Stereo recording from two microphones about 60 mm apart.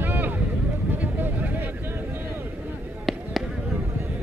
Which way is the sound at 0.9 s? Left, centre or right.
Right.